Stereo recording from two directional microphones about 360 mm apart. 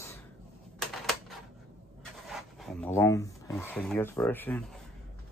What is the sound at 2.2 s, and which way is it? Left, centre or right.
Speech, centre.